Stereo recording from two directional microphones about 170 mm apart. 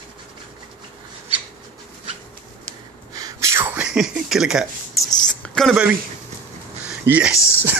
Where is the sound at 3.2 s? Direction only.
20° right (ahead or behind); by 5.0 s 5° right (ahead or behind).